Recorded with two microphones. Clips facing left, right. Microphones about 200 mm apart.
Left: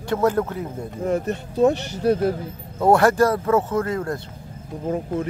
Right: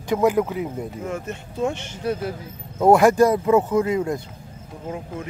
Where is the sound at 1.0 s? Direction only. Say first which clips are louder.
Left 6 dB; 35° left (ahead or behind).